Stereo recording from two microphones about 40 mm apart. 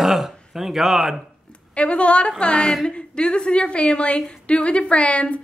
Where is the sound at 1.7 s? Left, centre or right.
Left.